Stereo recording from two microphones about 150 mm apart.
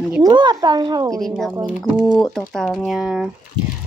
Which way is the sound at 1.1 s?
Centre (ahead or behind).